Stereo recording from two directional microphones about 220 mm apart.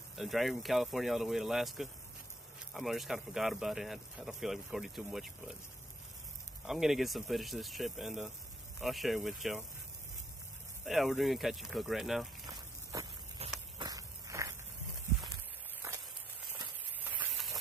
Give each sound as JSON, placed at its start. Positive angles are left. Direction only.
{"t": 0.1, "sound": "speech", "side_deg": 0}
{"t": 6.6, "sound": "speech", "side_deg": 0}
{"t": 10.9, "sound": "speech", "side_deg": 0}
{"t": 13.4, "sound": "insect", "side_deg": -30}
{"t": 13.7, "sound": "insect", "side_deg": -15}
{"t": 17.0, "sound": "a sound", "side_deg": -10}